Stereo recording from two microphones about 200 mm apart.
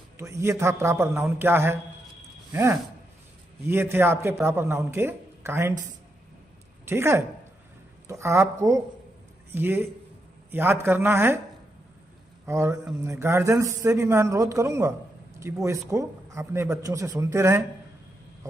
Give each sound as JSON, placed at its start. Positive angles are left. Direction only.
{"t": 0.2, "sound": "a man's voice", "side_deg": -15}
{"t": 6.9, "sound": "a man's voice", "side_deg": -10}
{"t": 12.4, "sound": "a man's voice", "side_deg": -15}